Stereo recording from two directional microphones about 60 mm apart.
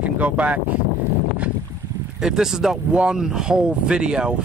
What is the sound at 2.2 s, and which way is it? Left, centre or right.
Speech, centre.